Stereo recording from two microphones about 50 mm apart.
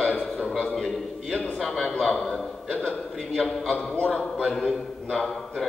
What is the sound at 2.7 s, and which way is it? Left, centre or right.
Speech, left.